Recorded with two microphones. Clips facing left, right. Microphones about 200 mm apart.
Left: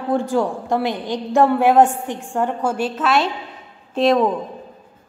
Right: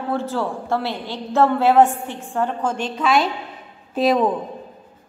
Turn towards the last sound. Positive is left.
turn(degrees=0)  # may be behind; listen again after turning